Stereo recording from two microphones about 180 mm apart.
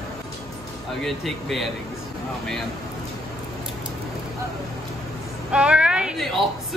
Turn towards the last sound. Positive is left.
turn(degrees=0)  # may be behind; listen again after turning